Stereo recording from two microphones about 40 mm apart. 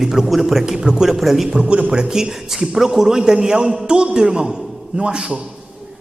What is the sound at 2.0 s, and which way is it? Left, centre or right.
A man's voice, centre.